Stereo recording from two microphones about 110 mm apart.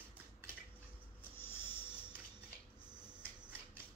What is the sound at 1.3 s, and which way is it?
Music, 20° left (ahead or behind).